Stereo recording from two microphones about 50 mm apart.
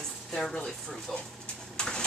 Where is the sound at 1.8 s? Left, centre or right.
Centre.